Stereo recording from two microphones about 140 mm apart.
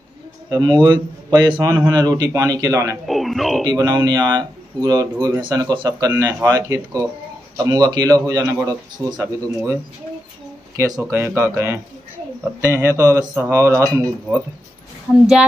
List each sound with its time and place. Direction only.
0.5 s speech: 30° right (ahead or behind)
3.1 s speech: centre (ahead or behind)
3.6 s speech: 30° right (ahead or behind)
10.8 s speech: 20° right (ahead or behind)